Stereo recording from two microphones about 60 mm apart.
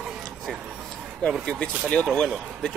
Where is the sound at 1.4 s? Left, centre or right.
Centre.